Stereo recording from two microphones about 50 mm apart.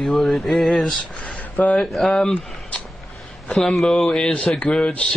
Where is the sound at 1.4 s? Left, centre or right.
Left.